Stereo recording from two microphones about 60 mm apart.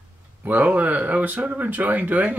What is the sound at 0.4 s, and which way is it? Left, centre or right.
Speech, right.